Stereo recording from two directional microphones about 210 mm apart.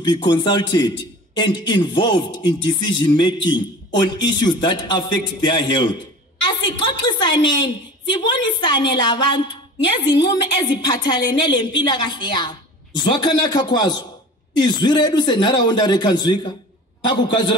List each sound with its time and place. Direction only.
0.0 s a man's voice: 20° left (ahead or behind)